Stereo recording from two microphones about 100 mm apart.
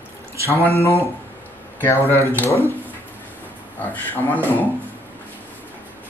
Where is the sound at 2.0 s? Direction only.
30° right (ahead or behind).